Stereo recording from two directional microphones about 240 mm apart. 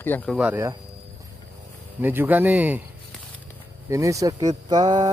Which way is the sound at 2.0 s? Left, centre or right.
Centre.